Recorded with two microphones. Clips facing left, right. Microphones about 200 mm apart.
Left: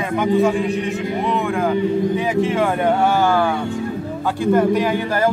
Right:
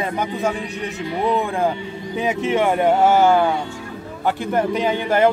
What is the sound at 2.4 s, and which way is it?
Speech, 20° right (ahead or behind).